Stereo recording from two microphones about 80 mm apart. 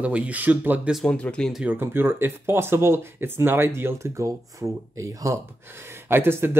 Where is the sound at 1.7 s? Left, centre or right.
Right.